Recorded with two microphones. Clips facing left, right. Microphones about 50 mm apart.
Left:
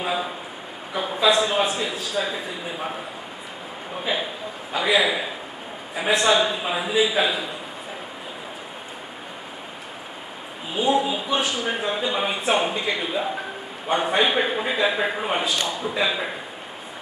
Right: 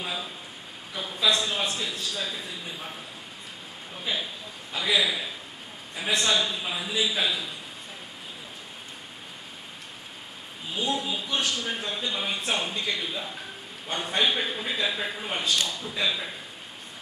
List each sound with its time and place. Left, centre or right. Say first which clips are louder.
0.0 s a man's voice: left 8 dB; left
0.9 s a sound: left 8 dB; left
1.2 s a man's voice: left 6 dB; centre
4.0 s a man's voice: left 5 dB; left
10.7 s a man's voice: left 8 dB; centre